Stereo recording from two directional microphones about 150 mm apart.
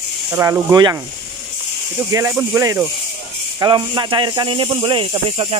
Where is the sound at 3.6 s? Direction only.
30° right (ahead or behind).